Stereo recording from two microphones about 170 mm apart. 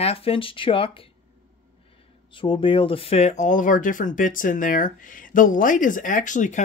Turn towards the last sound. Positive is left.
turn(degrees=50)  # may be behind; listen again after turning